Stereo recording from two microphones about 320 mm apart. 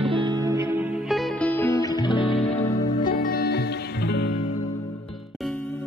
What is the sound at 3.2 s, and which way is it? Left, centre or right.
Music, left.